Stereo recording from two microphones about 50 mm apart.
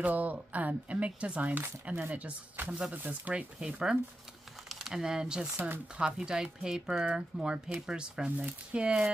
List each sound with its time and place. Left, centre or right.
0.0 s speech: right
3.5 s speech: centre
4.6 s speech: centre